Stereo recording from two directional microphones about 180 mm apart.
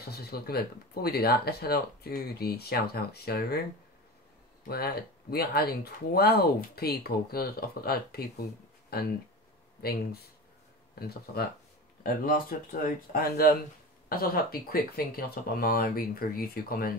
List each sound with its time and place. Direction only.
0.0 s speech: 60° left (ahead or behind)
4.6 s speech: 60° left (ahead or behind)